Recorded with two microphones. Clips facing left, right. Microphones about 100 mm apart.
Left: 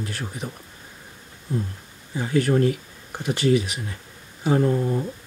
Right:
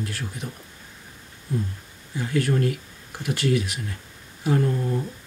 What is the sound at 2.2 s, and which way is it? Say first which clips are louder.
Speech: left 3 dB; 30° left (ahead or behind).